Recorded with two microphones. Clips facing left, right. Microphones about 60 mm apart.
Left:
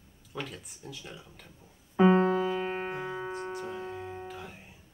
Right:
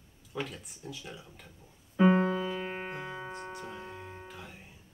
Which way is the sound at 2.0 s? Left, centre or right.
Centre.